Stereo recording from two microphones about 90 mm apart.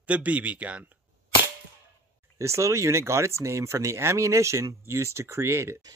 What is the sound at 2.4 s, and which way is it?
Speech, 35° right (ahead or behind).